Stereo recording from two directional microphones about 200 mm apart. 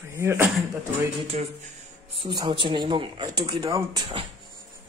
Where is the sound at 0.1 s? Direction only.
15° right (ahead or behind).